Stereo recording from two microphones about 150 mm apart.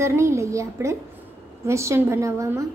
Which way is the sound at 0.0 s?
20° right (ahead or behind).